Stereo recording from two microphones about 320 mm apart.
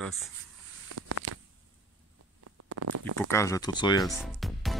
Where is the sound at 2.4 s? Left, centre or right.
Right.